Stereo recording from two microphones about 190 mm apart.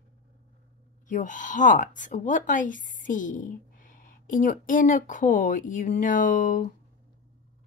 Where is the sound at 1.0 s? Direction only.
40° left (ahead or behind).